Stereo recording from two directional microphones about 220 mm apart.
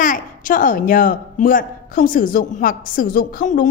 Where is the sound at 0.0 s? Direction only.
40° left (ahead or behind).